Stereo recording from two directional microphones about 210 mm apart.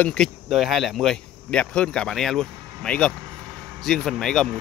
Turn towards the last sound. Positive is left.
turn(degrees=5)  # may be behind; listen again after turning